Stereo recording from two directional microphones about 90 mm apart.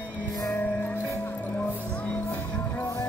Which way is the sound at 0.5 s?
15° left (ahead or behind).